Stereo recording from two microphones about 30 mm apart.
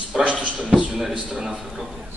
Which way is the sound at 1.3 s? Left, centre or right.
Centre.